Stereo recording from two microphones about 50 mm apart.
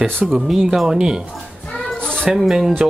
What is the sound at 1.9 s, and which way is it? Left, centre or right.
Cat, centre.